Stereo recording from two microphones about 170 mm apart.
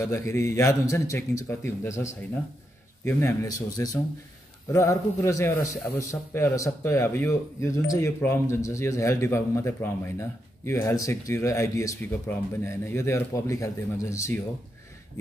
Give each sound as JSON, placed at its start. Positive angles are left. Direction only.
{"t": 0.0, "sound": "a man's voice", "side_deg": 15}